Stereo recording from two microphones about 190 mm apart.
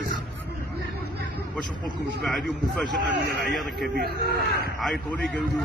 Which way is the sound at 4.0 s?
55° right (ahead or behind).